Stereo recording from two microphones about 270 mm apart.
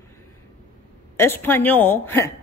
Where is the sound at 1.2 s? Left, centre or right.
Centre.